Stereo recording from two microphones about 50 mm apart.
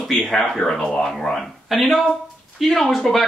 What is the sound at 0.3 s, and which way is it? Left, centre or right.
Speech, centre.